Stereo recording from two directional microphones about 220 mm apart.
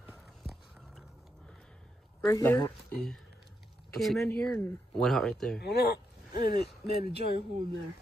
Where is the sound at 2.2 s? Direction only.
10° left (ahead or behind).